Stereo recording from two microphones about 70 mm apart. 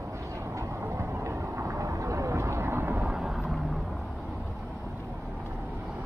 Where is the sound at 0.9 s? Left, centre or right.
Right.